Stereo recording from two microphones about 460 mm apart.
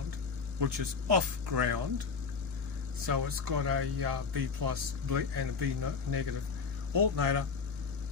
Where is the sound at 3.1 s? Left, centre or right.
Right.